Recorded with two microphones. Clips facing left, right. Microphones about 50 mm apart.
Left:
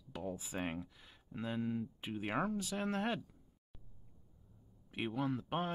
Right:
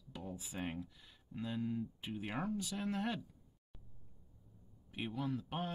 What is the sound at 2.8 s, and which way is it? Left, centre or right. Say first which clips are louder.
Speech: left 3 dB; left.